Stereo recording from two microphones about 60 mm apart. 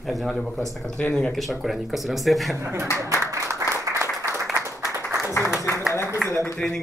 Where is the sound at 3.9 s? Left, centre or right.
Right.